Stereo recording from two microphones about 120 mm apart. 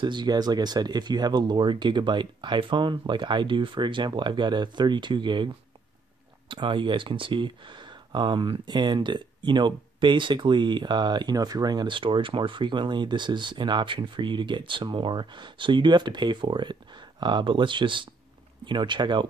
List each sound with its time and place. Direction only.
0.0 s speech: 40° right (ahead or behind)
6.5 s speech: 45° right (ahead or behind)